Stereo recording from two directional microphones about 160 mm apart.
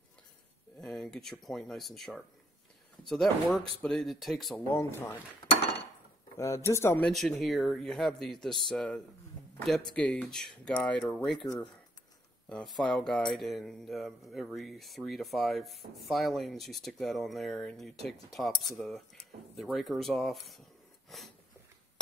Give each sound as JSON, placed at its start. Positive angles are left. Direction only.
{"t": 0.7, "sound": "speech", "side_deg": 5}
{"t": 4.6, "sound": "speech", "side_deg": 15}
{"t": 6.3, "sound": "speech", "side_deg": 20}
{"t": 7.1, "sound": "speech", "side_deg": 0}
{"t": 11.3, "sound": "speech", "side_deg": 30}
{"t": 12.4, "sound": "speech", "side_deg": 5}